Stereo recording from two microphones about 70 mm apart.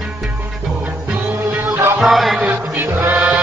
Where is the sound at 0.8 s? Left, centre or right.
Right.